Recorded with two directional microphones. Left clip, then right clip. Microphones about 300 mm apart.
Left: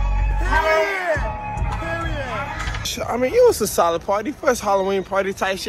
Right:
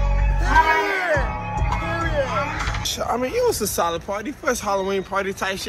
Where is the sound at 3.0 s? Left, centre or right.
Centre.